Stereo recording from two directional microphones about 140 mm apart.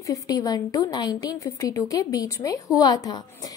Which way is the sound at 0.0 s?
25° left (ahead or behind).